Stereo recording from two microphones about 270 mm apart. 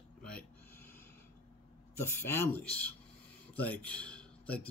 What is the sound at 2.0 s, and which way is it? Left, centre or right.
Speech, centre.